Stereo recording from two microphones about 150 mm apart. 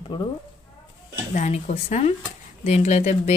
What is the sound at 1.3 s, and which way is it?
Speech, 50° left (ahead or behind).